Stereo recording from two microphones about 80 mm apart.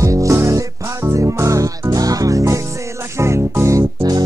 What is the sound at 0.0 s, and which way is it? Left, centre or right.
Music, right.